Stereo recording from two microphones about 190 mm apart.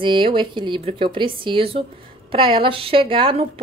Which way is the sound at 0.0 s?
25° right (ahead or behind).